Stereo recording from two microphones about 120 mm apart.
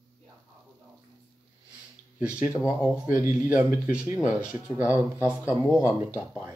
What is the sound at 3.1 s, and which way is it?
Speech, 20° right (ahead or behind).